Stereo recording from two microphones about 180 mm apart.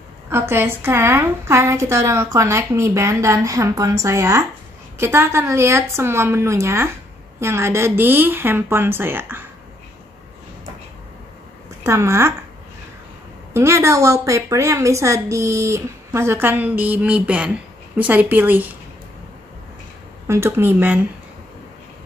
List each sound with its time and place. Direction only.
0.3 s a woman's voice: 15° right (ahead or behind)
11.8 s a woman's voice: 15° right (ahead or behind)
13.5 s a woman's voice: 15° right (ahead or behind)
20.2 s a woman's voice: 15° right (ahead or behind)